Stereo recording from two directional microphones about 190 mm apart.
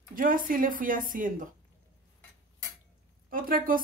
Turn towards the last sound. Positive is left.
turn(degrees=-50)  # may be behind; listen again after turning